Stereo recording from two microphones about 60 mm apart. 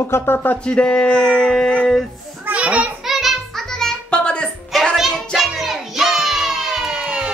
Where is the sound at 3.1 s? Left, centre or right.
Centre.